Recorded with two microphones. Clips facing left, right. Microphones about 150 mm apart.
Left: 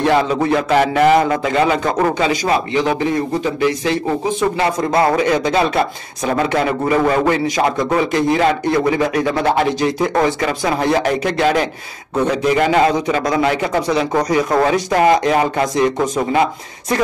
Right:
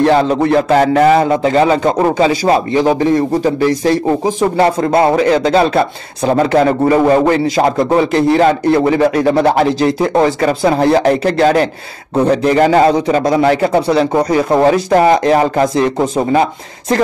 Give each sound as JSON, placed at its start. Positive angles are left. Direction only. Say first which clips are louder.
{"t": 0.0, "sound": "music", "louder": "right 4 dB", "side_deg": -35}
{"t": 0.3, "sound": "a man's voice", "louder": "right 4 dB", "side_deg": -40}